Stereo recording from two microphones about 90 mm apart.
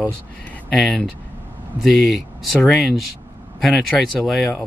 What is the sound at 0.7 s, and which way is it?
Speech, 5° left (ahead or behind).